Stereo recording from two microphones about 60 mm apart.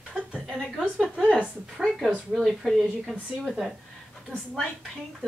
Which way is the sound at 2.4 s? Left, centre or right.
Centre.